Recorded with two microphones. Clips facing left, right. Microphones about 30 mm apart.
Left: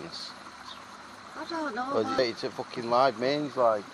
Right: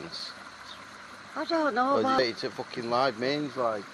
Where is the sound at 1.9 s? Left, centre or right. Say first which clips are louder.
Right 2 dB; centre.